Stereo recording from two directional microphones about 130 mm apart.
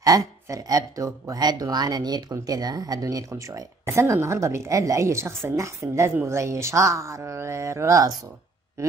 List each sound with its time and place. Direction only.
0.0 s speech: 25° right (ahead or behind)